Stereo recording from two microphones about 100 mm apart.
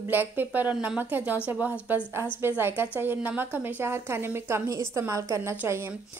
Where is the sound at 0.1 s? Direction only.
20° right (ahead or behind).